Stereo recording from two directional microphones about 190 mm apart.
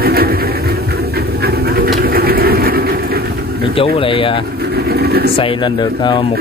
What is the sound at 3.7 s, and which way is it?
Speech, 30° left (ahead or behind).